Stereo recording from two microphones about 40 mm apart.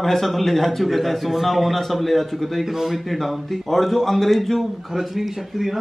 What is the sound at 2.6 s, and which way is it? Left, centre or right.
Speech, centre.